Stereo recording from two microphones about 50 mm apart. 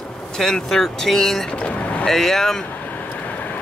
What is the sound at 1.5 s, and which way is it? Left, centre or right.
Vehicle, left.